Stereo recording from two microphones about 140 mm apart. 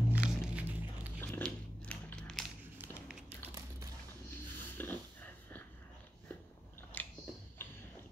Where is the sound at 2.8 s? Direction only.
15° right (ahead or behind).